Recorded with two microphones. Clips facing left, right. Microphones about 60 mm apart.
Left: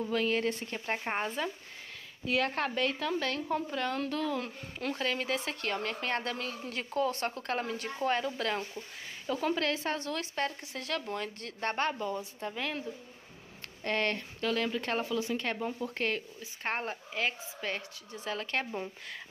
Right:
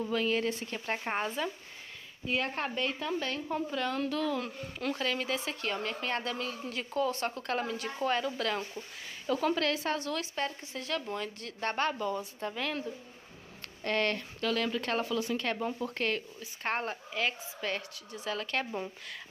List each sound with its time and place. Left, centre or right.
0.1 s speech: left
0.7 s speech: left
2.2 s speech: left
3.7 s a woman's voice: left
9.3 s speech: left
10.4 s speech: left
11.1 s a woman's voice: left; by 12.8 s centre
13.8 s speech: left
15.5 s speech: centre
15.9 s a woman's voice: left